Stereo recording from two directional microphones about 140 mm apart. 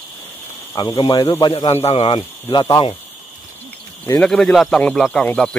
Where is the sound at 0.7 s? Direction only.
30° left (ahead or behind).